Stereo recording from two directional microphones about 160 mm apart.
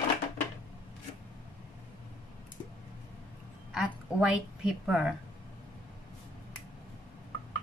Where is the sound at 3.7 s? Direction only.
5° right (ahead or behind).